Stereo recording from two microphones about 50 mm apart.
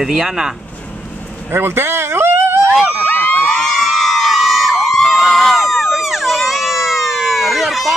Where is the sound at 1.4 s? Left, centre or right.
Right.